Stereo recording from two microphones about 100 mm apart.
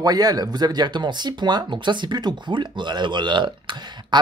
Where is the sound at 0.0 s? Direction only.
40° right (ahead or behind).